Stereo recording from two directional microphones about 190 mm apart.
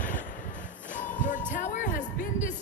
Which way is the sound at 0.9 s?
40° left (ahead or behind).